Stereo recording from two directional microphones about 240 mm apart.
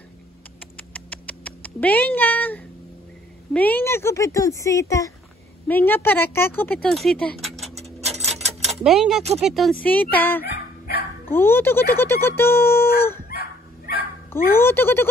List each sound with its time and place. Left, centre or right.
0.9 s rodents: centre
3.5 s speech: centre
7.4 s a sound: centre
7.7 s a sound: right
8.8 s speech: centre
13.3 s dog: left
14.5 s speech: centre